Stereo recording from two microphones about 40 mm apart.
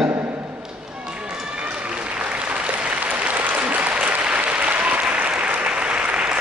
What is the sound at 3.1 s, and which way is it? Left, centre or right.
Applause, right.